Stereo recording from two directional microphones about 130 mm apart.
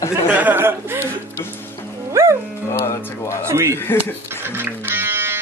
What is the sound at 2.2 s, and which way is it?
Music, 20° right (ahead or behind).